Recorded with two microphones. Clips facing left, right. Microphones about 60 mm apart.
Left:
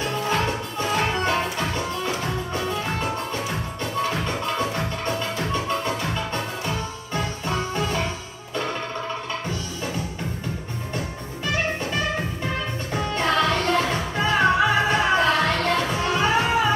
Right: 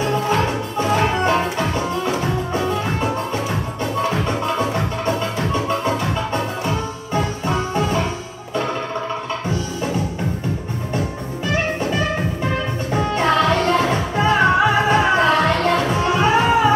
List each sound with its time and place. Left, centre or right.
0.0 s music: right
4.1 s music: right
12.9 s music: right